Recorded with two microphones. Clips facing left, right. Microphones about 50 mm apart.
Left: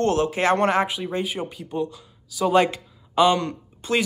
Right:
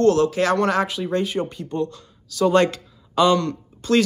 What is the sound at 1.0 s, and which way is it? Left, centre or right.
Speech, centre.